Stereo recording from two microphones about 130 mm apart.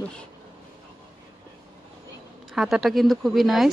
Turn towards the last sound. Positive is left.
turn(degrees=0)  # may be behind; listen again after turning